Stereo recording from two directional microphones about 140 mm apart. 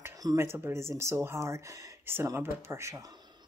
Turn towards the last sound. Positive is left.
turn(degrees=-20)  # may be behind; listen again after turning